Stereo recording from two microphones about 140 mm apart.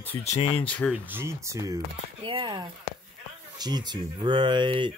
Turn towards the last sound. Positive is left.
turn(degrees=-35)  # may be behind; listen again after turning